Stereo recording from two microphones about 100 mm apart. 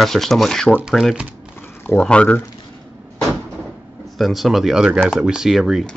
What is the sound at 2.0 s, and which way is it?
Speech, 10° left (ahead or behind).